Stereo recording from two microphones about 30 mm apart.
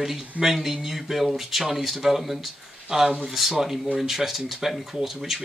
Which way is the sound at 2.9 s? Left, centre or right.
Right.